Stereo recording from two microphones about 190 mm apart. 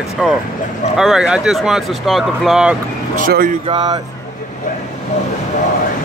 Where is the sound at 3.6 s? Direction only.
20° right (ahead or behind).